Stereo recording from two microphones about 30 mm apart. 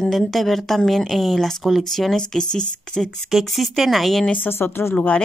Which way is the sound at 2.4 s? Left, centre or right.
Left.